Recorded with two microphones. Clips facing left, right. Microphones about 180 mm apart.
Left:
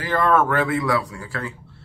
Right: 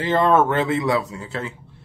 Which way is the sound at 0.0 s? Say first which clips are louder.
Right 2 dB; 25° right (ahead or behind).